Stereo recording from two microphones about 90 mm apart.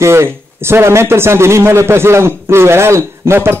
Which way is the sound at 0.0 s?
30° right (ahead or behind).